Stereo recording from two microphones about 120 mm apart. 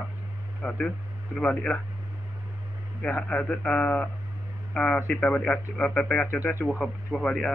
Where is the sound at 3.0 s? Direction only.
10° left (ahead or behind).